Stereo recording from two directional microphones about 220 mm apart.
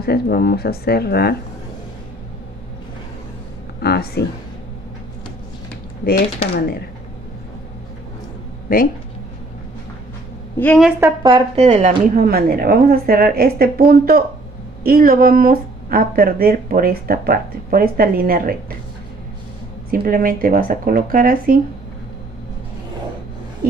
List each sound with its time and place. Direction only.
0.0 s speech: 45° left (ahead or behind)
3.8 s a sound: 45° left (ahead or behind)
6.5 s speech: 45° left (ahead or behind)
10.6 s a woman's voice: centre (ahead or behind)
11.0 s speech: 20° right (ahead or behind); by 18.6 s 40° right (ahead or behind)
19.9 s speech: 40° right (ahead or behind)